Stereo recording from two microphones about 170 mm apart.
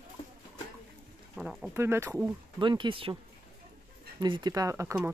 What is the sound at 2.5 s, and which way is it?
Speech, 30° right (ahead or behind).